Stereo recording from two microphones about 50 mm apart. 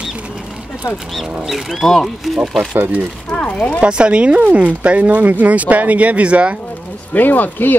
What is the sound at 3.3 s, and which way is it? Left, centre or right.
Speech, left.